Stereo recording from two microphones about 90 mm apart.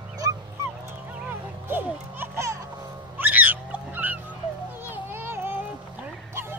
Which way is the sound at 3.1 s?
20° right (ahead or behind).